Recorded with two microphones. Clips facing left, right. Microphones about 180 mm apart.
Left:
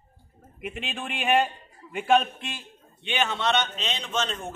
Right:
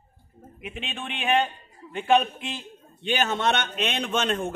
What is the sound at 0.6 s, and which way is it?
Speech, centre (ahead or behind).